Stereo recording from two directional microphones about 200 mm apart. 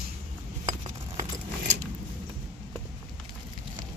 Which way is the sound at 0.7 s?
40° right (ahead or behind).